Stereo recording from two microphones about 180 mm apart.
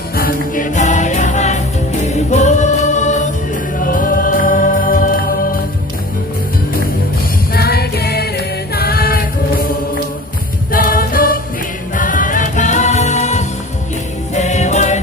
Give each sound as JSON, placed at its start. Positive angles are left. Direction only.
{"t": 0.1, "sound": "music", "side_deg": 50}
{"t": 7.5, "sound": "music", "side_deg": 60}
{"t": 10.7, "sound": "music", "side_deg": 50}